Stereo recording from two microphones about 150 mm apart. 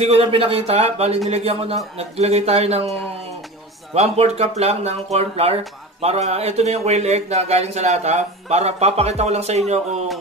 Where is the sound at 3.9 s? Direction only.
45° right (ahead or behind).